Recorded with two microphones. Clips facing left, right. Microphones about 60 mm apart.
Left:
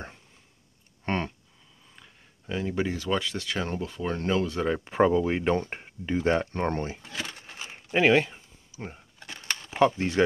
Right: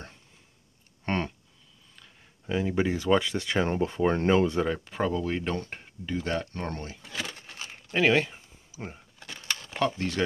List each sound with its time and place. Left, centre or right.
1.0 s a sound: centre
2.4 s speech: centre; by 4.6 s right
4.8 s speech: left
7.0 s crumpling: centre
9.2 s a sound: centre
9.8 s speech: centre